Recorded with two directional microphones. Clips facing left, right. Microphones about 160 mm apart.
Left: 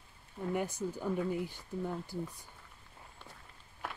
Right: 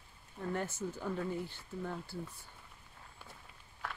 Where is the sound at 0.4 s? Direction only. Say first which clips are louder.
Left 3 dB; 10° left (ahead or behind).